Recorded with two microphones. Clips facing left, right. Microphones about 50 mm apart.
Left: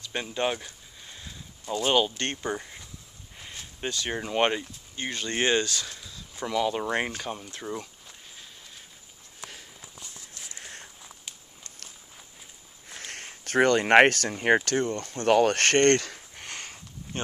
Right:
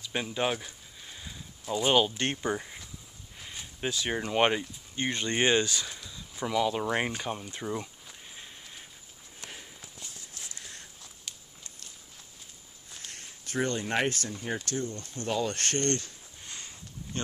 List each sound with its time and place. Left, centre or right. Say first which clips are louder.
0.0 s speech: left 1 dB; centre
4.9 s speech: right 1 dB; right; by 7.5 s centre
10.5 s a sound: left 3 dB; left
12.9 s speech: left 6 dB; left
16.4 s sniff: left 5 dB; left
17.1 s speech: left 2 dB; left